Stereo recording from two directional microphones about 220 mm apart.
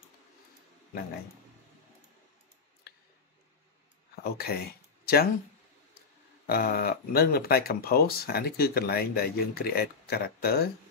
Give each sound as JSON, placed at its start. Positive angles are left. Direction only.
{"t": 4.2, "sound": "speech", "side_deg": 45}
{"t": 6.4, "sound": "speech", "side_deg": 45}